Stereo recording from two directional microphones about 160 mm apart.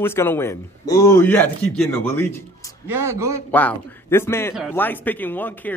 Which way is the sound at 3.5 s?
10° left (ahead or behind).